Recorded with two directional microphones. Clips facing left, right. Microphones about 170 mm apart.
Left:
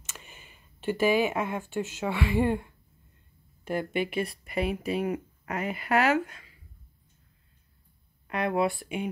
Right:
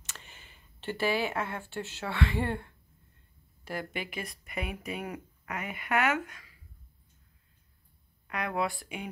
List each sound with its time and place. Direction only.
0.1 s speech: 15° left (ahead or behind); by 6.5 s 30° left (ahead or behind)
8.3 s speech: 25° left (ahead or behind)